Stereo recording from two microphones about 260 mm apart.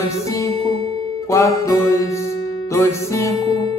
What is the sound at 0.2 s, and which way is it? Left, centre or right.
Music, centre.